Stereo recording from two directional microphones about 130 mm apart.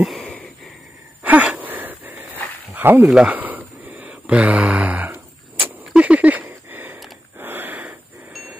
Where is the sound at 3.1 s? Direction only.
10° right (ahead or behind).